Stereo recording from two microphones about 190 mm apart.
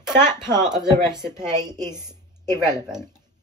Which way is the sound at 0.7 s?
Centre (ahead or behind).